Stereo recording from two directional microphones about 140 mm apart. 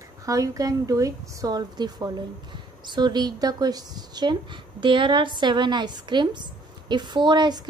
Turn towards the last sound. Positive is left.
turn(degrees=-30)  # may be behind; listen again after turning